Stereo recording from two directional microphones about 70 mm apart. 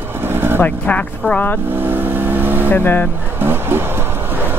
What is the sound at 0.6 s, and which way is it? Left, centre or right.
Speech, left.